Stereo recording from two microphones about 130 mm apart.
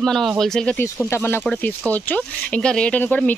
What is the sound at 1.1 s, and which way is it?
Speech, 15° left (ahead or behind).